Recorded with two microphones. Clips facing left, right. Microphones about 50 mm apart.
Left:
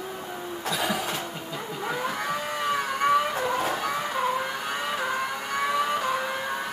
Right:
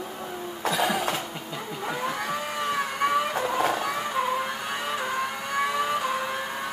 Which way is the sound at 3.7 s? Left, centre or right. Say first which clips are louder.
Right 1 dB; centre.